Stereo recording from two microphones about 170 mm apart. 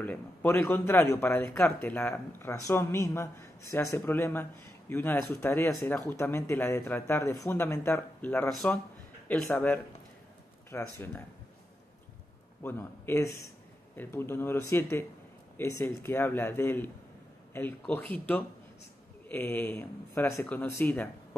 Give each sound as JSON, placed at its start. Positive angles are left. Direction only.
{"t": 0.0, "sound": "speech", "side_deg": 10}
{"t": 5.8, "sound": "speech", "side_deg": 0}
{"t": 6.0, "sound": "speech", "side_deg": 15}
{"t": 12.6, "sound": "speech", "side_deg": 15}